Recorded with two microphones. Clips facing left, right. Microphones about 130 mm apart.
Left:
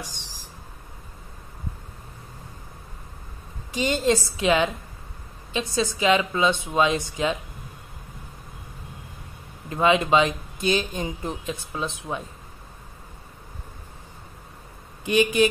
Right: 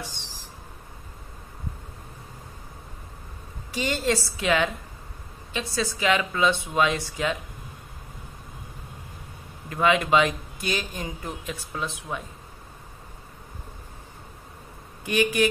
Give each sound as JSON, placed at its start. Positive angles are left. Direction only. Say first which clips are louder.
{"t": 3.7, "sound": "speech", "louder": "left 3 dB", "side_deg": 20}
{"t": 9.7, "sound": "speech", "louder": "left 2 dB", "side_deg": 25}
{"t": 15.0, "sound": "speech", "louder": "left 3 dB", "side_deg": 20}